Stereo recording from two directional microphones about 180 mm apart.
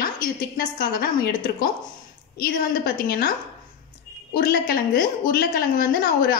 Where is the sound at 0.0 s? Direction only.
55° left (ahead or behind).